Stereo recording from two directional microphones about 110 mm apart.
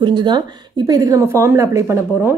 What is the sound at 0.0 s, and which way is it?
A woman's voice, 45° right (ahead or behind).